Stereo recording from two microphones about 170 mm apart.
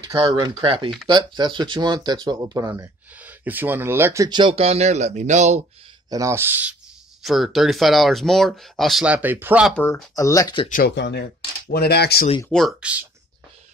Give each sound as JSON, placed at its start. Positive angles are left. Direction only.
{"t": 0.0, "sound": "speech", "side_deg": -20}
{"t": 3.2, "sound": "speech", "side_deg": -10}
{"t": 6.0, "sound": "speech", "side_deg": -20}
{"t": 7.2, "sound": "speech", "side_deg": 0}
{"t": 9.8, "sound": "speech", "side_deg": 5}
{"t": 10.1, "sound": "speech", "side_deg": 20}
{"t": 10.7, "sound": "speech", "side_deg": 70}
{"t": 11.7, "sound": "speech", "side_deg": 70}
{"t": 12.4, "sound": "speech", "side_deg": 0}